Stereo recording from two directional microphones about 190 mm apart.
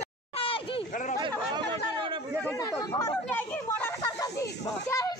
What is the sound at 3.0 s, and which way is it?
Speech, 15° left (ahead or behind).